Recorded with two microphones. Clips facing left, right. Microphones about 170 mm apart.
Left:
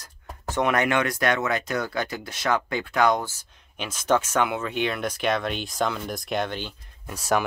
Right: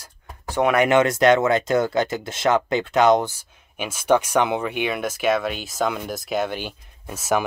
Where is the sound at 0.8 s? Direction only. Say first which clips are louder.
Right 7 dB; 25° right (ahead or behind).